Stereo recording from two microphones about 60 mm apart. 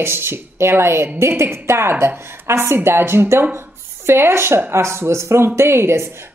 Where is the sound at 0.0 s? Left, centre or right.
Right.